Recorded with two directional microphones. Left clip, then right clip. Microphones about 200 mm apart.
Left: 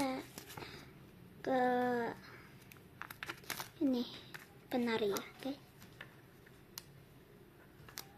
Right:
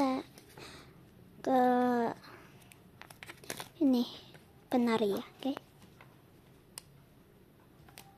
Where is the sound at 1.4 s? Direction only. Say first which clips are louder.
Right 5 dB; 50° right (ahead or behind).